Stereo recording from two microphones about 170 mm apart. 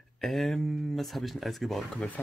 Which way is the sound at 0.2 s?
Centre (ahead or behind).